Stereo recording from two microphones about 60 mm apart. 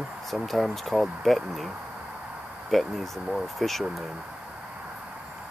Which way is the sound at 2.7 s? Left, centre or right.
Centre.